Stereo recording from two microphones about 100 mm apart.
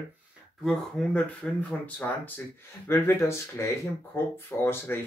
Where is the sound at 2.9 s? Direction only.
25° left (ahead or behind).